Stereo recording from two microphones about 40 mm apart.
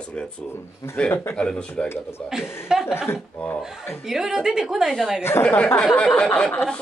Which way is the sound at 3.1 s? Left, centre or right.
Left.